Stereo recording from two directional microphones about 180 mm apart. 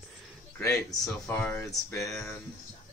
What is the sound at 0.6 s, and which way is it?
A man's voice, 15° left (ahead or behind).